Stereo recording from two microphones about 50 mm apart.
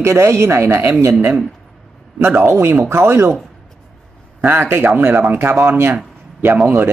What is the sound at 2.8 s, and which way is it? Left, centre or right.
Speech, right.